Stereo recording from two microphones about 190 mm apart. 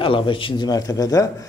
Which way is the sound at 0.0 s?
25° left (ahead or behind).